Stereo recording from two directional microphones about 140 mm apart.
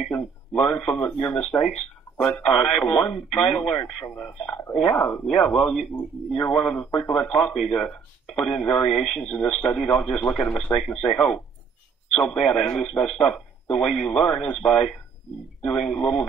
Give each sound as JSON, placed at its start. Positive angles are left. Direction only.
{"t": 0.6, "sound": "speech", "side_deg": 0}
{"t": 4.0, "sound": "speech", "side_deg": 20}
{"t": 4.7, "sound": "speech", "side_deg": 5}